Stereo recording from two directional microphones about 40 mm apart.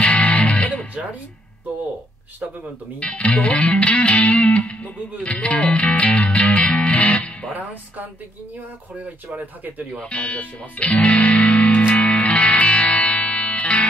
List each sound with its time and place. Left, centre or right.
0.0 s music: left
3.0 s music: left
7.5 s speech: right
10.0 s speech: left
11.9 s music: left